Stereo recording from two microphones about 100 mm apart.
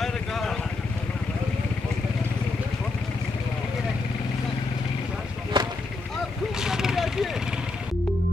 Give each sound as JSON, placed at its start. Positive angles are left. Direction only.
{"t": 0.0, "sound": "vehicle", "side_deg": 5}
{"t": 5.5, "sound": "vehicle", "side_deg": -50}
{"t": 6.6, "sound": "vehicle", "side_deg": -5}